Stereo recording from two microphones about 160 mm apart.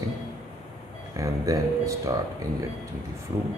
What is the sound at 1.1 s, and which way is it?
A man's voice, 20° right (ahead or behind).